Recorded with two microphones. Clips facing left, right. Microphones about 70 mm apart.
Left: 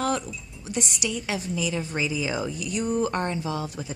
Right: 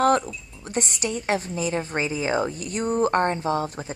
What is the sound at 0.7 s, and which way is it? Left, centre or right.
A woman's voice, right.